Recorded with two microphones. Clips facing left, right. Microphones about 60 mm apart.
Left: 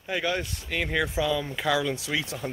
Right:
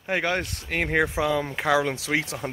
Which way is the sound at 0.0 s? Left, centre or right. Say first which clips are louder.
Right 3 dB; right.